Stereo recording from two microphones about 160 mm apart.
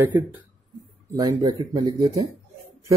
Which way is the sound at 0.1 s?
10° right (ahead or behind).